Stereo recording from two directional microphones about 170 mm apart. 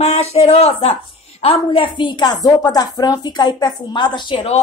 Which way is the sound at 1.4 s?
35° left (ahead or behind).